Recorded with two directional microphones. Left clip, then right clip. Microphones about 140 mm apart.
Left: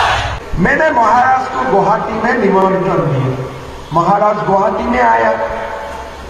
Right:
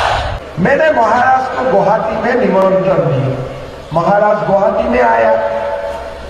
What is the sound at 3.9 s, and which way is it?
Speech, 45° left (ahead or behind).